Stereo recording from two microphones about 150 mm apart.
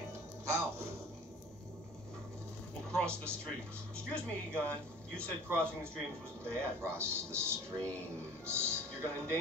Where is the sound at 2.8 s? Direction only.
5° left (ahead or behind).